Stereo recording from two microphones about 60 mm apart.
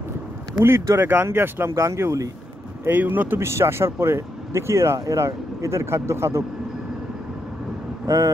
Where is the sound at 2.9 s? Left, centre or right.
Right.